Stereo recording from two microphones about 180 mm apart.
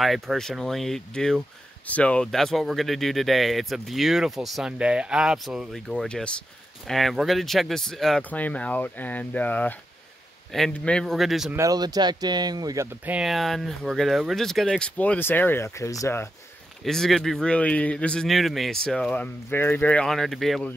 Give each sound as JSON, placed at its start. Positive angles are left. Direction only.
{"t": 0.0, "sound": "speech", "side_deg": 0}
{"t": 11.5, "sound": "speech", "side_deg": -20}
{"t": 13.0, "sound": "speech", "side_deg": -5}
{"t": 16.8, "sound": "speech", "side_deg": 0}